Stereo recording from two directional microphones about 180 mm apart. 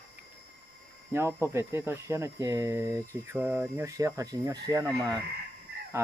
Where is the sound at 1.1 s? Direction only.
15° right (ahead or behind).